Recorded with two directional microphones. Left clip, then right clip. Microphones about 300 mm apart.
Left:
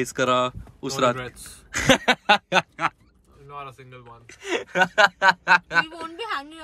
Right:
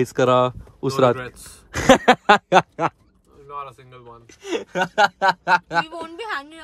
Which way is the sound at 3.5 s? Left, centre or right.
Right.